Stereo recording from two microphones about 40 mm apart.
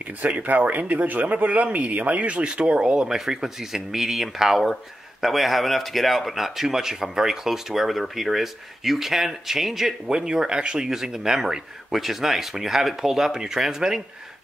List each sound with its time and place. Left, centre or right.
0.0 s speech: right
3.2 s speech: centre
10.9 s speech: centre